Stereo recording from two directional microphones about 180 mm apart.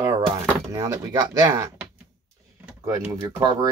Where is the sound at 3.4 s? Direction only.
25° right (ahead or behind).